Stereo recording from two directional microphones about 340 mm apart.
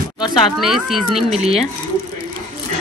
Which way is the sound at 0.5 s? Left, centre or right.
Centre.